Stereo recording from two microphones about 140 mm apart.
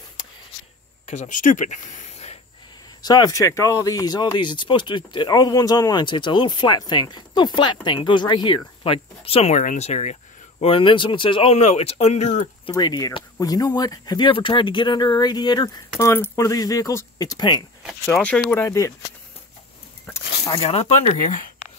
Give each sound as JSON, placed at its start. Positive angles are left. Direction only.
{"t": 1.0, "sound": "speech", "side_deg": 55}
{"t": 3.0, "sound": "speech", "side_deg": 30}
{"t": 10.6, "sound": "speech", "side_deg": 40}
{"t": 12.6, "sound": "speech", "side_deg": 30}
{"t": 16.0, "sound": "speech", "side_deg": 20}
{"t": 18.0, "sound": "speech", "side_deg": 10}
{"t": 20.5, "sound": "speech", "side_deg": 45}